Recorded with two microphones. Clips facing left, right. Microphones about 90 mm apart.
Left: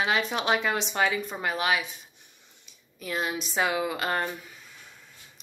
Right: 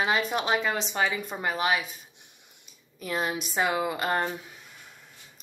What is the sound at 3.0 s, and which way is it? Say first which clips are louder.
A woman's voice: right 1 dB; 5° right (ahead or behind).